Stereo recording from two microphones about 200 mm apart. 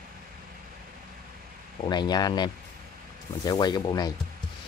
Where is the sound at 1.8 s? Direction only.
20° left (ahead or behind).